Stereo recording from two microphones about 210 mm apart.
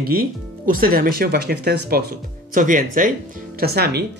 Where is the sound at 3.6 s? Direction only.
50° right (ahead or behind).